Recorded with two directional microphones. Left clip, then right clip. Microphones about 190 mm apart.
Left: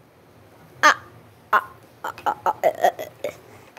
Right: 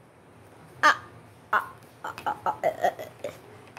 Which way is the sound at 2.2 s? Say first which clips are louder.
Left 6 dB; 20° left (ahead or behind).